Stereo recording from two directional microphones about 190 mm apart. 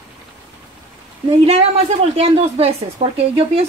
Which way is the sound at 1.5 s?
35° right (ahead or behind).